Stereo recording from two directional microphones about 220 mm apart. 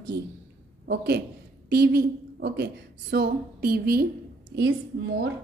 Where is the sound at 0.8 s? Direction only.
50° right (ahead or behind).